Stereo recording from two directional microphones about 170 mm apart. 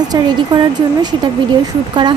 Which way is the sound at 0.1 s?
25° right (ahead or behind).